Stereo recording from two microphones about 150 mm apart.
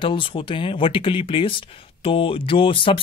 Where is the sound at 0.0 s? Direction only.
35° left (ahead or behind).